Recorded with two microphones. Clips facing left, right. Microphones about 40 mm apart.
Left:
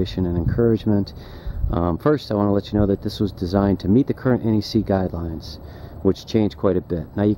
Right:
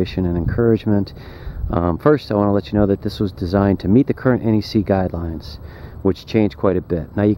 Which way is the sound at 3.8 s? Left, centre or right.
Right.